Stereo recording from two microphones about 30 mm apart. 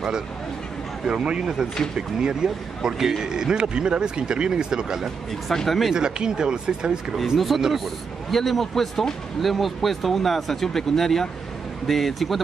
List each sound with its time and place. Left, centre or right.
1.0 s a man's voice: right
5.5 s a man's voice: centre
5.9 s a man's voice: right
7.3 s a man's voice: centre